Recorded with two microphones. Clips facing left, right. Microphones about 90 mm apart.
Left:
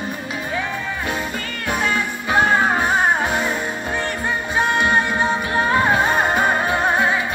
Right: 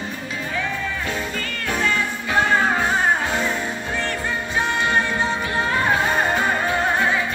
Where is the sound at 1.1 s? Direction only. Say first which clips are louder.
Left 1 dB; 20° left (ahead or behind).